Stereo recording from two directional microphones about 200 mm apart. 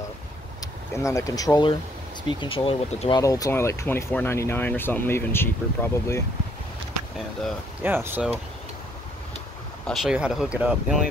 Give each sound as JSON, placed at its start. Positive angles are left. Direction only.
{"t": 0.6, "sound": "speech", "side_deg": 15}
{"t": 7.8, "sound": "speech", "side_deg": -10}
{"t": 9.8, "sound": "speech", "side_deg": -5}